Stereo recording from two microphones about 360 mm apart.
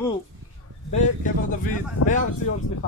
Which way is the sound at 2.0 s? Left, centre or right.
Left.